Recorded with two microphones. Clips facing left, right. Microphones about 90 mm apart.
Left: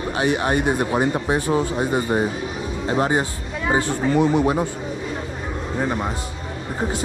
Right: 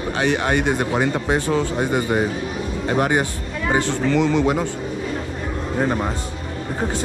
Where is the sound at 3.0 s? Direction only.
70° right (ahead or behind).